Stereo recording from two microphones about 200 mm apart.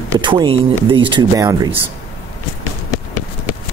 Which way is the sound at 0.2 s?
25° right (ahead or behind).